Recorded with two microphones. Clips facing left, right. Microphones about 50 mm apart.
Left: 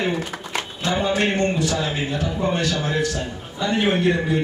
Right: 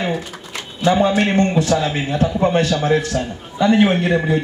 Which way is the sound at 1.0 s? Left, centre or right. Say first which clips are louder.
Right 4 dB; right.